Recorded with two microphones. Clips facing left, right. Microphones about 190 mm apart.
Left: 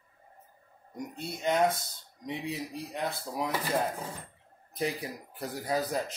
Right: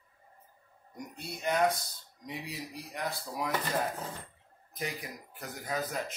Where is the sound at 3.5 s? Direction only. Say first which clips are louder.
Left 2 dB; 10° left (ahead or behind).